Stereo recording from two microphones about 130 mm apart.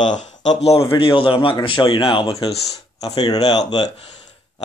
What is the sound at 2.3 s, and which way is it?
Speech, 30° left (ahead or behind).